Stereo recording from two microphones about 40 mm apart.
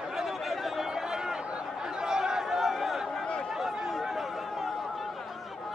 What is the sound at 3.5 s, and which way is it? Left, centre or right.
Chatter, centre.